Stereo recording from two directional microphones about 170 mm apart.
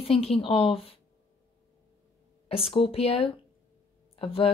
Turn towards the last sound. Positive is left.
turn(degrees=35)  # may be behind; listen again after turning